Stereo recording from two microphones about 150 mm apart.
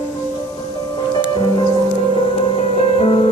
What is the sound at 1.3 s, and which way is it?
Music, 30° left (ahead or behind).